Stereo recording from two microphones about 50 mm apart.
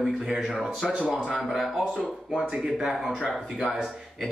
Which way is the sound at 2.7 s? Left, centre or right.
Centre.